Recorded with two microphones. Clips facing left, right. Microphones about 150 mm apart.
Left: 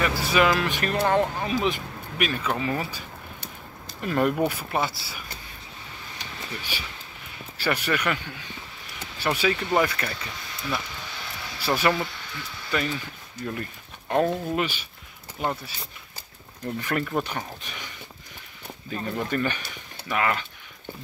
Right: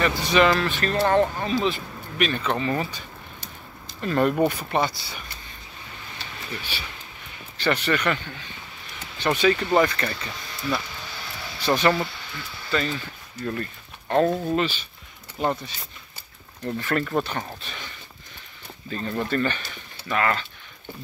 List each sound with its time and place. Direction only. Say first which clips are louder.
0.0 s speech: right 2 dB; 5° left (ahead or behind)
6.1 s a sound: right 1 dB; 10° left (ahead or behind)
7.5 s speech: right 3 dB; 10° left (ahead or behind)
16.8 s speech: right 2 dB; 10° left (ahead or behind)